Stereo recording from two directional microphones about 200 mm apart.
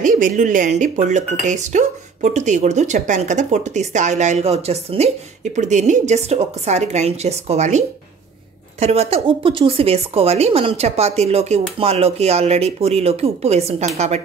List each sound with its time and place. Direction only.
0.0 s speech: 40° right (ahead or behind)